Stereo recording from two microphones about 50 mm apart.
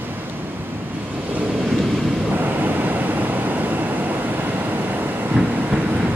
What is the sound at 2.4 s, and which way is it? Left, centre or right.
Vehicle, right.